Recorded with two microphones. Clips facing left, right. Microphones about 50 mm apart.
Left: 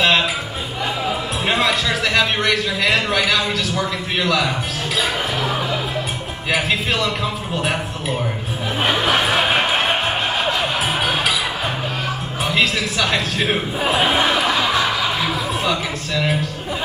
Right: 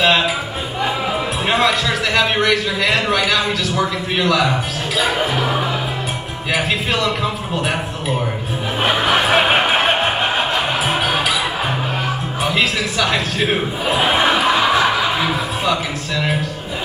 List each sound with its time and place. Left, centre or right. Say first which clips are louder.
0.0 s a sound: right 1 dB; centre
1.5 s a man's voice: right 2 dB; centre
4.2 s music: right 3 dB; centre
6.5 s a man's voice: right 1 dB; centre
8.8 s music: right 2 dB; centre
10.9 s music: right 2 dB; centre
12.4 s a sound: even; centre
15.6 s a man's voice: right 2 dB; centre